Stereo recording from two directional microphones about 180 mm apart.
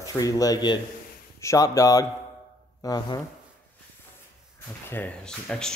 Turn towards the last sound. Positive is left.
turn(degrees=5)  # may be behind; listen again after turning